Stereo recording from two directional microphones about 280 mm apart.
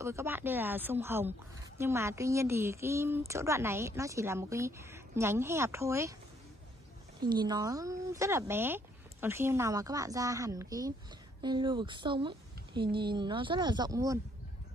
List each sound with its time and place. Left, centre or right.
0.0 s speech: centre
7.2 s speech: centre